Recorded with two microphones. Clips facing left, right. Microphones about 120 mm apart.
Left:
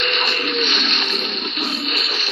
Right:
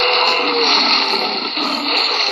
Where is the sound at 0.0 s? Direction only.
60° right (ahead or behind).